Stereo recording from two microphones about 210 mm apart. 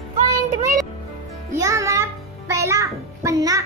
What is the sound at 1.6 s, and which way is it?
Music, 15° right (ahead or behind).